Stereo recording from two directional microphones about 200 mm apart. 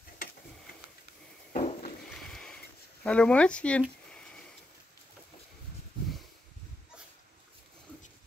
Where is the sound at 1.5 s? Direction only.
35° left (ahead or behind).